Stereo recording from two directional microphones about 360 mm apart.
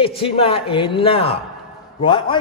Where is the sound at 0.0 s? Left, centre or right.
Centre.